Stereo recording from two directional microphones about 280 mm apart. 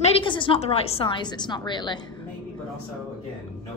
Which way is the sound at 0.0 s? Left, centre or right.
Centre.